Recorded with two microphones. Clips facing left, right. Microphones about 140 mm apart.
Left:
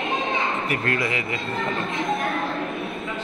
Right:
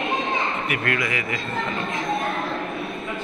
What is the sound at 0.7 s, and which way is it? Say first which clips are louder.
Speech: left 1 dB; 30° left (ahead or behind).